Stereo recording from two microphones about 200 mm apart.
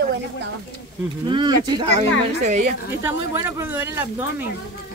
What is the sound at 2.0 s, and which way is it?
Speech, 35° right (ahead or behind).